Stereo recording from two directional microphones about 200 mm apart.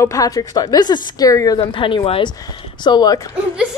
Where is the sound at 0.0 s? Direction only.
15° left (ahead or behind).